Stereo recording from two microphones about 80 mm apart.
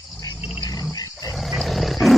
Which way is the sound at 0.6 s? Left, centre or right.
Left.